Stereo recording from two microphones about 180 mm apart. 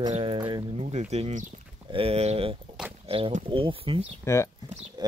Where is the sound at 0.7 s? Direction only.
35° right (ahead or behind).